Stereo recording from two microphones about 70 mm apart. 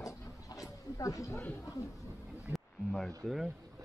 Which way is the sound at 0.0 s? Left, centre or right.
Left.